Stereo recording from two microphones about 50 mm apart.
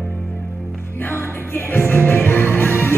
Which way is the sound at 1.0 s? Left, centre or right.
Left.